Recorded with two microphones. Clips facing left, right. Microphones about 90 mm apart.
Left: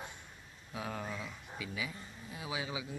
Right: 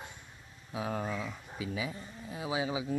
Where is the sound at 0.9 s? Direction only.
40° right (ahead or behind).